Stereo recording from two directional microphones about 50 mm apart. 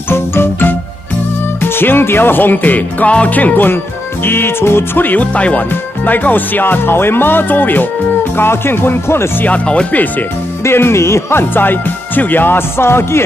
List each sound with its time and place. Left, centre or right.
0.1 s music: left
1.6 s speech: left
5.7 s speech: left
8.4 s speech: left
10.6 s speech: left
11.5 s speech: left